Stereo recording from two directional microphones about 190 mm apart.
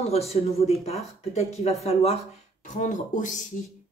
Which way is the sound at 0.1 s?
35° left (ahead or behind).